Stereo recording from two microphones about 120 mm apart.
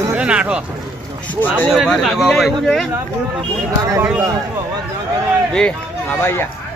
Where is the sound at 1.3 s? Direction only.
15° left (ahead or behind).